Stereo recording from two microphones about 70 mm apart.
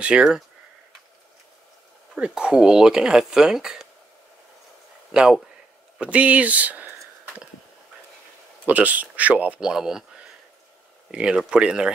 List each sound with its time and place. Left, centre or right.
0.0 s speech: centre
2.1 s speech: centre
5.1 s speech: centre
5.9 s speech: centre
8.6 s speech: right
11.1 s speech: centre